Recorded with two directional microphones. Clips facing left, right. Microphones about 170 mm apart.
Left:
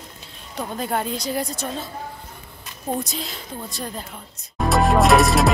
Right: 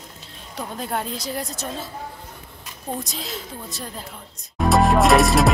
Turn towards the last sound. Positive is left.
turn(degrees=0)  # may be behind; listen again after turning